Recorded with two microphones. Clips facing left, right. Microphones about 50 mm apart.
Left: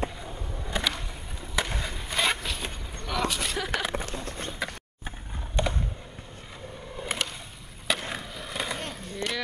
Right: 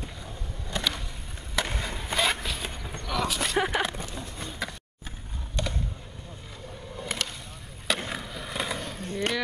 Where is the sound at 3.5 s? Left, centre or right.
Right.